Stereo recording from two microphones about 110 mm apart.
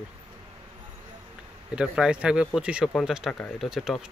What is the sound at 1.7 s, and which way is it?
Speech, 10° right (ahead or behind).